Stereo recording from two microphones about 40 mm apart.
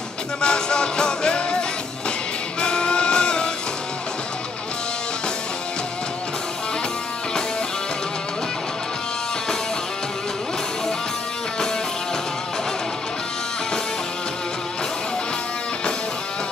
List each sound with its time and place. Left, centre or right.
0.4 s music: left
2.6 s music: left